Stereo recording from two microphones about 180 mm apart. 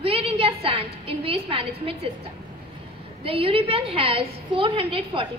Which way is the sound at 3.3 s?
30° right (ahead or behind).